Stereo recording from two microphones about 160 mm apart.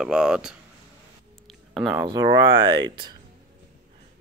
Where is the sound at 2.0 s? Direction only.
30° right (ahead or behind).